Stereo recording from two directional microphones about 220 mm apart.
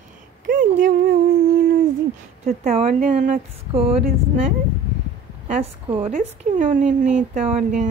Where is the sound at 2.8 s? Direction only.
35° right (ahead or behind).